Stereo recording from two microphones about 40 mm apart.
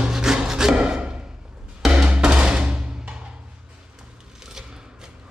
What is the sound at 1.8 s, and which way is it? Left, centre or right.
Music, centre.